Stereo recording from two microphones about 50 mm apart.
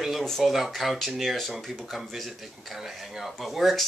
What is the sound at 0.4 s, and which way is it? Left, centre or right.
Speech, centre.